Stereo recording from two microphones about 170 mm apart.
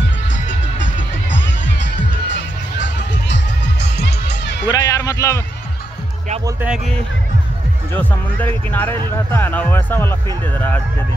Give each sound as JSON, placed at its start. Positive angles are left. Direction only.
{"t": 3.8, "sound": "music", "side_deg": 85}
{"t": 4.6, "sound": "a sound", "side_deg": 20}
{"t": 7.9, "sound": "speech", "side_deg": 10}